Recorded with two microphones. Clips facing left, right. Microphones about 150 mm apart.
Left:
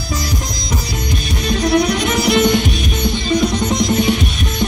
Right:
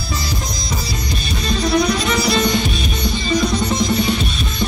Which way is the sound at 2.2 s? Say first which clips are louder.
Left 4 dB; 20° left (ahead or behind).